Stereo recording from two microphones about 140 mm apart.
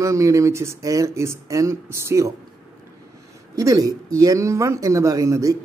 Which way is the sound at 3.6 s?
25° right (ahead or behind).